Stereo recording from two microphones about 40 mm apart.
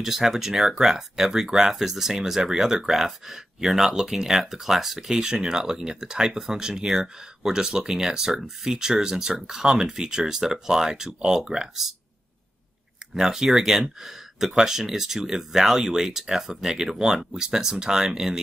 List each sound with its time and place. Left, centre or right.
0.0 s speech: centre
5.2 s speech: centre
13.1 s speech: centre